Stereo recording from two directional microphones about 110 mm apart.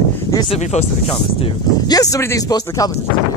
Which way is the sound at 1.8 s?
35° left (ahead or behind).